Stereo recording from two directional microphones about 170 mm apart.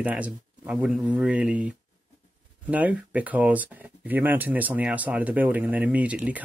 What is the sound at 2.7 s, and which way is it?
Speech, 10° right (ahead or behind).